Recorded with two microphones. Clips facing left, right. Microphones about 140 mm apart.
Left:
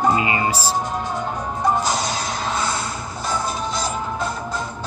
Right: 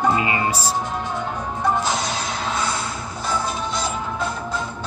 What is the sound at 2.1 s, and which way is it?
Music, 40° left (ahead or behind).